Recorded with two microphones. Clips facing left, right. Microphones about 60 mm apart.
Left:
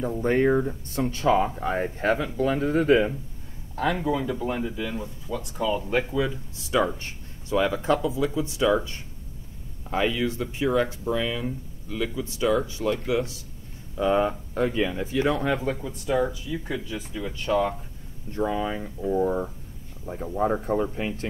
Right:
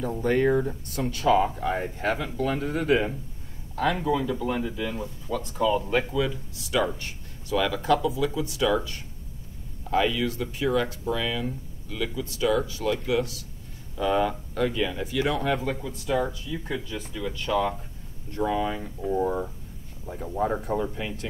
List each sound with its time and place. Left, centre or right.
0.2 s speech: left
3.8 s speech: centre
5.6 s speech: centre
6.3 s speech: left
16.2 s speech: centre; by 18.8 s left
18.9 s speech: centre
20.2 s speech: left